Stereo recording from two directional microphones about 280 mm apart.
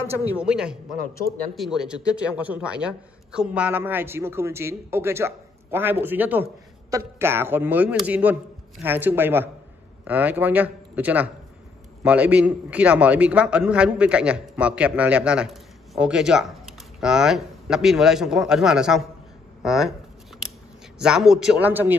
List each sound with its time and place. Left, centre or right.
0.3 s a man's voice: centre
21.0 s a man's voice: centre